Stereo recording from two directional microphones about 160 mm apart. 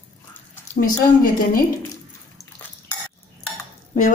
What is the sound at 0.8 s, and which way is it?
Speech, 60° left (ahead or behind).